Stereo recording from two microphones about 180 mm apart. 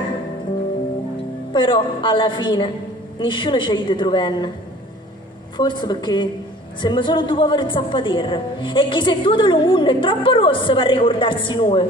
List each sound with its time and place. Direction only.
1.5 s a woman's voice: 25° left (ahead or behind)
5.6 s a woman's voice: 25° left (ahead or behind)